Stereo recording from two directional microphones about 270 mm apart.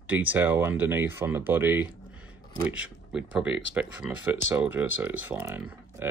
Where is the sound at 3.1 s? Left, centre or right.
Centre.